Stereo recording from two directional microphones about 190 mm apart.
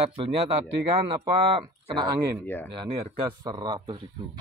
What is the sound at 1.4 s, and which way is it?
Speech, 25° right (ahead or behind).